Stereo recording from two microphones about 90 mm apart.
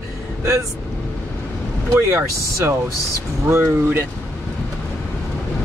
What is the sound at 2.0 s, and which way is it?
Speech, 30° right (ahead or behind).